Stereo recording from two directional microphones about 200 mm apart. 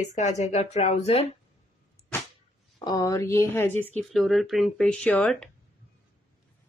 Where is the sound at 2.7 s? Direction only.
20° left (ahead or behind).